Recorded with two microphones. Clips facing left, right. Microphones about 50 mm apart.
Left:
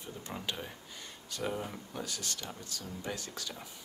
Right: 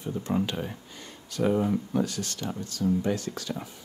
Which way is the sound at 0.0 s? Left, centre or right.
Right.